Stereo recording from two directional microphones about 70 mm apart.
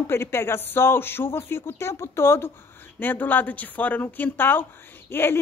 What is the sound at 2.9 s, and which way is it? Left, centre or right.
A woman's voice, left.